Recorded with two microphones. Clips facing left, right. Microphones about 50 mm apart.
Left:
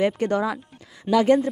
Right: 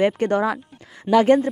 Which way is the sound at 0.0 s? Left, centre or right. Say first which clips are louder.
Right 3 dB; right.